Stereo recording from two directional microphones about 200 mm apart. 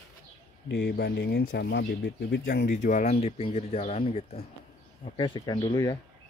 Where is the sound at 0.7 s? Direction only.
55° left (ahead or behind); by 5.9 s 20° left (ahead or behind).